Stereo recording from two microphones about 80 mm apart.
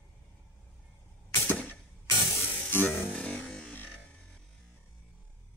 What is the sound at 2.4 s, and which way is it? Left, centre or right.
Music, left.